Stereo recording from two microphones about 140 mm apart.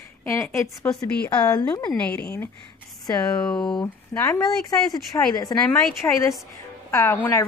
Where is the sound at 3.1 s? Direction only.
30° left (ahead or behind).